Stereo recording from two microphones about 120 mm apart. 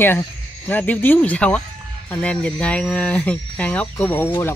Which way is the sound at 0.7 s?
15° left (ahead or behind).